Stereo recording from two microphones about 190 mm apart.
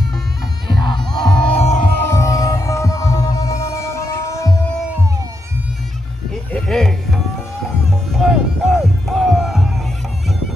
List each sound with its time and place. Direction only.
0.7 s music: 25° left (ahead or behind)
1.2 s music: 5° left (ahead or behind)
1.6 s music: 40° left (ahead or behind)
2.0 s music: 15° left (ahead or behind)
6.3 s a sound: 5° left (ahead or behind)
8.1 s music: centre (ahead or behind)